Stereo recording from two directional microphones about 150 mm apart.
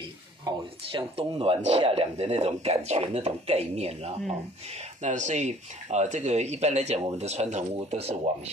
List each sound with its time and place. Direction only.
0.5 s speech: 30° right (ahead or behind)